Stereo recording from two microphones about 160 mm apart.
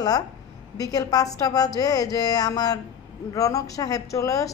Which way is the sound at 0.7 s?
25° left (ahead or behind).